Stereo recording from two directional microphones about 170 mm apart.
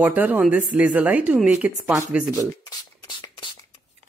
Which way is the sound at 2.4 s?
25° left (ahead or behind).